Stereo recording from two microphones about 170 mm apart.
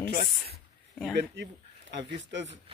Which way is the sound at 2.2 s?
90° right.